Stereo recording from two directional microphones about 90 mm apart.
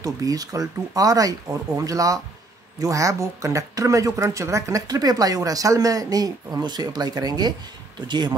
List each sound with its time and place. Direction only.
0.0 s speech: 40° right (ahead or behind)